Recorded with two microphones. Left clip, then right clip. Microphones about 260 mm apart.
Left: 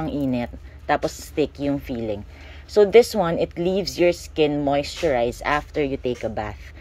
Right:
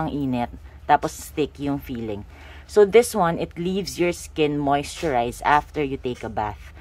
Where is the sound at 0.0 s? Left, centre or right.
Centre.